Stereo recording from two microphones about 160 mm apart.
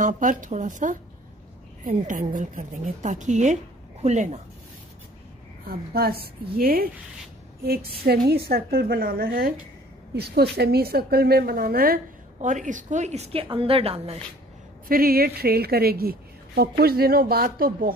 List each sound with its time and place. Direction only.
0.0 s a woman's voice: 55° right (ahead or behind)
5.7 s a woman's voice: 75° right (ahead or behind)
10.1 s a woman's voice: 90° right; by 14.1 s 40° right (ahead or behind)
14.9 s a woman's voice: 65° right (ahead or behind)